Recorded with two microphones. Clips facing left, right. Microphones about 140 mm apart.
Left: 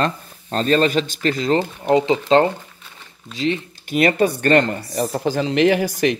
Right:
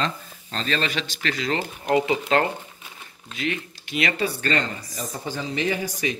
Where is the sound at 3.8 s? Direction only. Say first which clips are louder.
Left 9 dB; 45° left (ahead or behind); by 6.2 s 80° left.